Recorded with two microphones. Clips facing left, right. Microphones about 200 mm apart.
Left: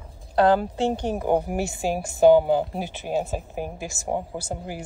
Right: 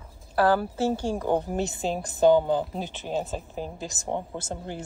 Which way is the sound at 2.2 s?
15° left (ahead or behind).